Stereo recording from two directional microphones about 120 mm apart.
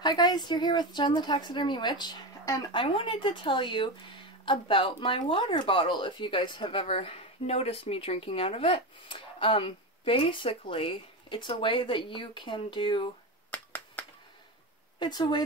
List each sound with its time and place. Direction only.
0.0 s speech: 35° left (ahead or behind)
13.5 s finger snapping: 15° left (ahead or behind)
15.0 s speech: 35° left (ahead or behind)